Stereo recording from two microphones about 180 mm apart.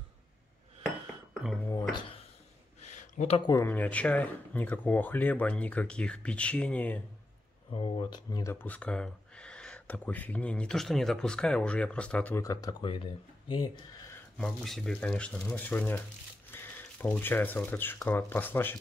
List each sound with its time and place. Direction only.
2.8 s a sound: 40° left (ahead or behind)
3.3 s speech: 25° left (ahead or behind)
3.6 s speech: 10° left (ahead or behind)
7.7 s speech: 25° left (ahead or behind)
14.4 s speech: centre (ahead or behind)